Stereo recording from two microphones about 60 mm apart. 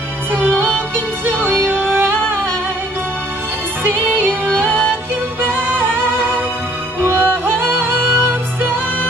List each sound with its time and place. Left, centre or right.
0.3 s music: right
3.8 s music: right
7.0 s music: right